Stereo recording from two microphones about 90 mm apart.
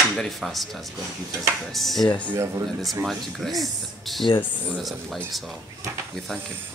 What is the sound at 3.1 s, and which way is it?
Speech, centre (ahead or behind).